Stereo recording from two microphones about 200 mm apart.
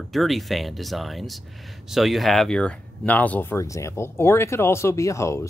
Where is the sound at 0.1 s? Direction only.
Centre (ahead or behind).